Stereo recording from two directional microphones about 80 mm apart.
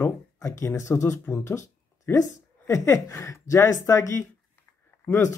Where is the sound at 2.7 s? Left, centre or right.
Left.